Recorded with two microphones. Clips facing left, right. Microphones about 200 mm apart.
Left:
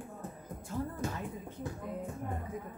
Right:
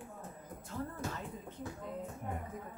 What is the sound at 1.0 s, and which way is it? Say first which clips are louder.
Speech: left 4 dB; 15° left (ahead or behind).